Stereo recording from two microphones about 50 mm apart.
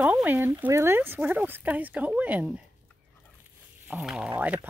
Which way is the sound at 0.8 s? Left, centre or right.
Right.